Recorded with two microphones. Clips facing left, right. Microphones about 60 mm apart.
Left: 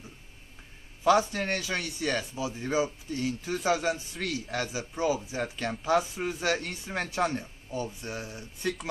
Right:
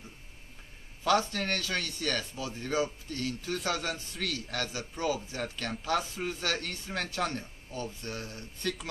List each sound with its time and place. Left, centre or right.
1.0 s speech: centre